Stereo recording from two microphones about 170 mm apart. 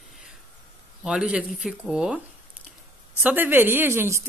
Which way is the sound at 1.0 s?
5° right (ahead or behind).